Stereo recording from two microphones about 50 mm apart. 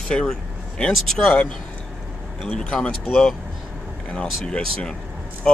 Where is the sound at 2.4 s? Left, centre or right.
Left.